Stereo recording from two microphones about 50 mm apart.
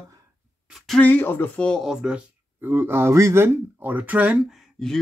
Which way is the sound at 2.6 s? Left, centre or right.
Right.